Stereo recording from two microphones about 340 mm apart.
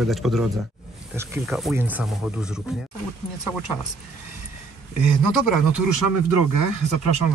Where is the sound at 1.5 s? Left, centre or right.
Centre.